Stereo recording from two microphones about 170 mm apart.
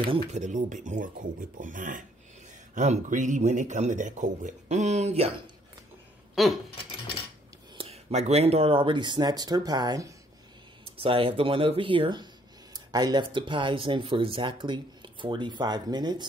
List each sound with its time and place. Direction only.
0.0 s speech: 30° right (ahead or behind)
0.4 s speech: 45° right (ahead or behind)
6.3 s a sound: centre (ahead or behind)
7.7 s speech: 35° right (ahead or behind)
11.0 s speech: 35° right (ahead or behind)